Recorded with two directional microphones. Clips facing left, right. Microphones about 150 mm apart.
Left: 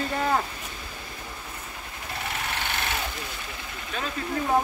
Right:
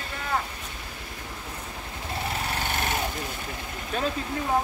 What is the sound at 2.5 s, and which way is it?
Jackhammer, 40° right (ahead or behind).